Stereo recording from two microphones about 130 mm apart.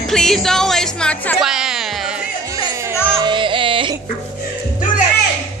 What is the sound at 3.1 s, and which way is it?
Music, 40° right (ahead or behind).